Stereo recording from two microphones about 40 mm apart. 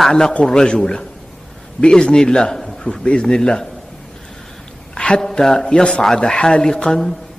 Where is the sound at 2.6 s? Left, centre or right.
Centre.